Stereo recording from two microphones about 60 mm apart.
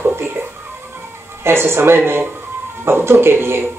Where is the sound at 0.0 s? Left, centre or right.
Right.